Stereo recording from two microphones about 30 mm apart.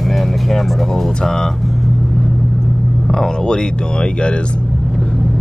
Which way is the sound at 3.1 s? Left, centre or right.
Left.